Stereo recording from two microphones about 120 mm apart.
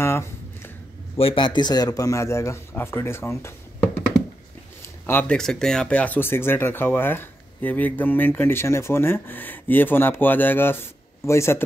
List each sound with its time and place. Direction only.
0.0 s a sound: 20° left (ahead or behind)
1.1 s a man's voice: 50° left (ahead or behind); by 4.0 s 20° left (ahead or behind)
5.0 s speech: 15° left (ahead or behind)